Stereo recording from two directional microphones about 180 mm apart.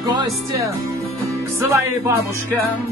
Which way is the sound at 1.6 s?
15° right (ahead or behind).